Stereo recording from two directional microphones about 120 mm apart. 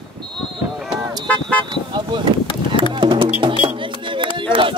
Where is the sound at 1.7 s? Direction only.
40° right (ahead or behind).